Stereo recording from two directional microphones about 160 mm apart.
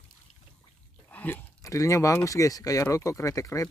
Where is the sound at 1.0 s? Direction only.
10° left (ahead or behind).